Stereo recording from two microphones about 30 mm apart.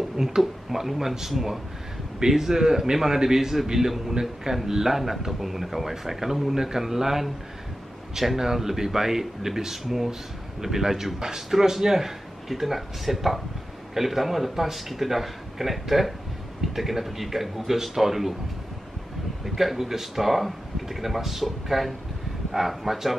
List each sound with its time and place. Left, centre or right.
0.4 s speech: centre
2.1 s a man's voice: centre
8.4 s speech: centre
19.4 s speech: centre